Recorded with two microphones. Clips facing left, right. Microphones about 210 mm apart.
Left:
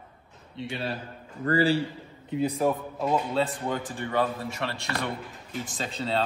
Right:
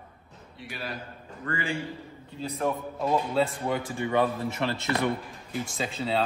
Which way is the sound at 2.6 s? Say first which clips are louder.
Left 2 dB; 5° left (ahead or behind).